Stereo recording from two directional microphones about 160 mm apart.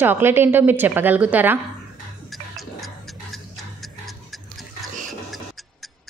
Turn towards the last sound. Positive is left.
turn(degrees=0)  # may be behind; listen again after turning